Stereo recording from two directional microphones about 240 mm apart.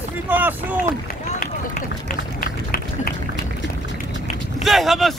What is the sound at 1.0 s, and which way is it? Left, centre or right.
Run, left.